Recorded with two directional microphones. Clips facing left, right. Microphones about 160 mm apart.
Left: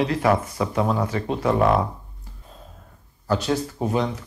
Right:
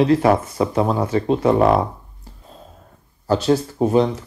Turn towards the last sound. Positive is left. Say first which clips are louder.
# right 7 dB
turn(degrees=-30)  # may be behind; listen again after turning